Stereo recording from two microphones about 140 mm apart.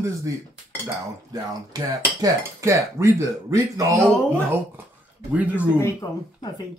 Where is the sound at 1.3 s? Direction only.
25° right (ahead or behind).